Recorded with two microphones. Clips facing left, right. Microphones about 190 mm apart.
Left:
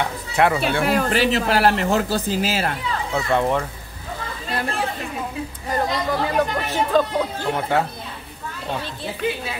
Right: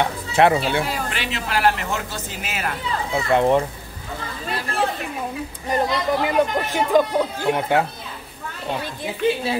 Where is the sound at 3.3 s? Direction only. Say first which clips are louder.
Right 4 dB; 20° right (ahead or behind).